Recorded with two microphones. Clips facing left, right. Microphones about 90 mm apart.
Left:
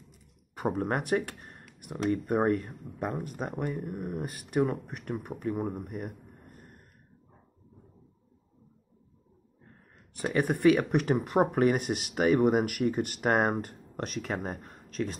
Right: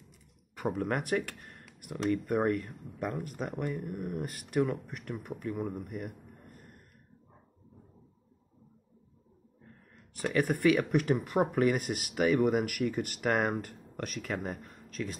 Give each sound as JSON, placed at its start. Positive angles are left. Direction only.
{"t": 0.6, "sound": "speech", "side_deg": 30}
{"t": 10.2, "sound": "speech", "side_deg": 25}